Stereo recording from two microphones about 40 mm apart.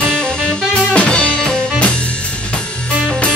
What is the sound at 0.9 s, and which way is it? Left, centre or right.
Music, left.